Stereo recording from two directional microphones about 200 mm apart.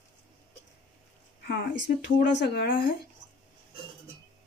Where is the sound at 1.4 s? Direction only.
50° left (ahead or behind).